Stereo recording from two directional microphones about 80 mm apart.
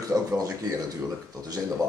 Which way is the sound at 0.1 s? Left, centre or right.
Right.